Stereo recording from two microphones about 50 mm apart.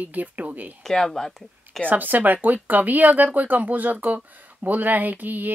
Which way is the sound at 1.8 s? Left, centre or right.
Right.